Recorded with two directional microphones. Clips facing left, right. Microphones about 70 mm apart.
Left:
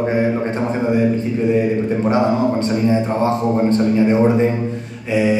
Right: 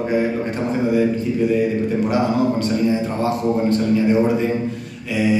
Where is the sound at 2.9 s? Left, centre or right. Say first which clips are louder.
Left 3 dB; left.